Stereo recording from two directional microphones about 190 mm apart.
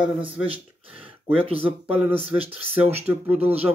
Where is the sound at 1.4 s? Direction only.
30° right (ahead or behind).